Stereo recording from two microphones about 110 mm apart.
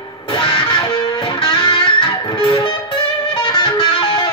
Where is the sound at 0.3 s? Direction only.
45° left (ahead or behind).